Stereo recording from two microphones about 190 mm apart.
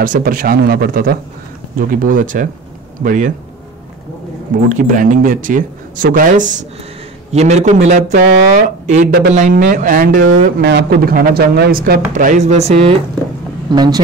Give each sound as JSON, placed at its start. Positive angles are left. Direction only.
{"t": 0.0, "sound": "speech", "side_deg": -45}
{"t": 4.7, "sound": "a man's voice", "side_deg": -45}
{"t": 13.7, "sound": "a woman's voice", "side_deg": -20}